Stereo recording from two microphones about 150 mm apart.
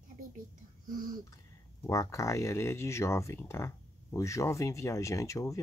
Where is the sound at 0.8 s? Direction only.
65° right (ahead or behind).